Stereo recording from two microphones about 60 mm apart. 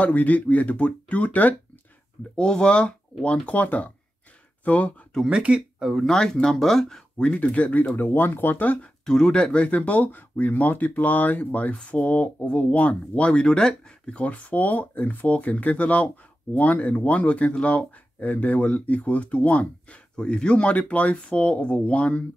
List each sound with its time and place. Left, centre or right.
0.0 s speech: left
2.3 s speech: centre
5.2 s speech: centre
5.8 s speech: centre
6.0 s speech: centre; by 8.9 s left
9.0 s speech: centre